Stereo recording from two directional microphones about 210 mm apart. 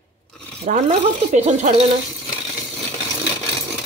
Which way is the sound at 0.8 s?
30° right (ahead or behind).